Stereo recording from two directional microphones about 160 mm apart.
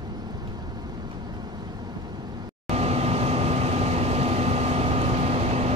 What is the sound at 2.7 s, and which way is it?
Vehicle, 40° right (ahead or behind).